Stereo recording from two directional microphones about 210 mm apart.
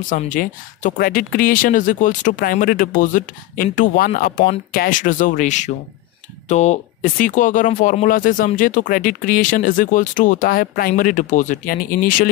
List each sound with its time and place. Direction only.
0.1 s speech: 40° left (ahead or behind)